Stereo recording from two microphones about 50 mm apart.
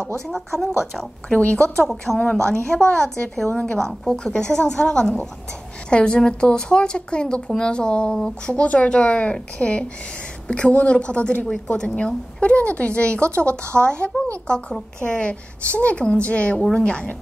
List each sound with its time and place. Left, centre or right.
0.3 s speech: centre
1.3 s a woman's voice: left
2.3 s a woman's voice: centre
11.4 s speech: centre
11.7 s a woman's voice: centre